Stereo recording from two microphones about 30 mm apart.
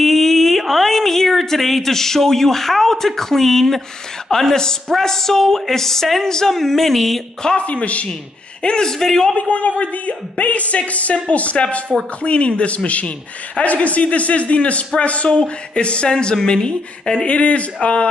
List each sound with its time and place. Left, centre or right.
0.0 s a sound: centre
4.3 s speech: centre
6.5 s speech: centre
7.5 s speech: left
8.6 s speech: left
9.0 s speech: centre
9.4 s speech: left
15.2 s speech: left
17.3 s speech: left